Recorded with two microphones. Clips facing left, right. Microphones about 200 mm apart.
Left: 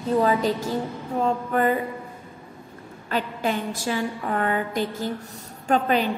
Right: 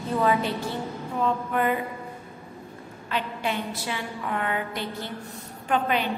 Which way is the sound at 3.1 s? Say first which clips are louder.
Left 4 dB; 45° left (ahead or behind).